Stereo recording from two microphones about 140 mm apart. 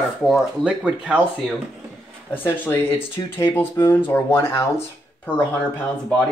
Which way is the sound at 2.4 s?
15° left (ahead or behind).